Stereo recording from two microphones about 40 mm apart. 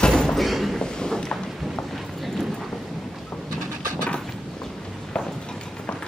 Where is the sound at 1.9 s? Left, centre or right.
Centre.